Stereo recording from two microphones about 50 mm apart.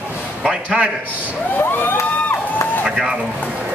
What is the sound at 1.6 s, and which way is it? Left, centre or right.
Cheering, left.